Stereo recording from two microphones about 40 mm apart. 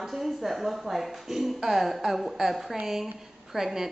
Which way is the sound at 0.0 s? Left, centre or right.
Centre.